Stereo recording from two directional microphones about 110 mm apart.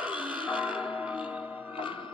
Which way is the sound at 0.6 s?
10° right (ahead or behind).